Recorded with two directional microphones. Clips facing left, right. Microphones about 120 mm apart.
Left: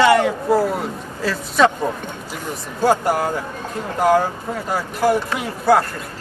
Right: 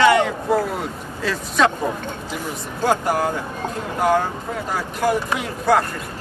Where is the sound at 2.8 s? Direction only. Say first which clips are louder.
Left 3 dB; 5° left (ahead or behind).